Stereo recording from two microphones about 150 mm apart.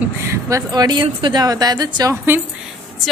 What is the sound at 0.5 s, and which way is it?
A woman's voice, 25° right (ahead or behind).